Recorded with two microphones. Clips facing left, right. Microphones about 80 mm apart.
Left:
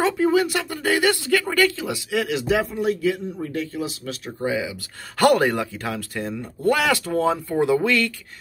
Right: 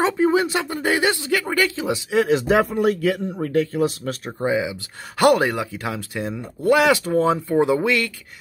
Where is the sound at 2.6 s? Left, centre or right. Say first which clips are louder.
Right 3 dB; right.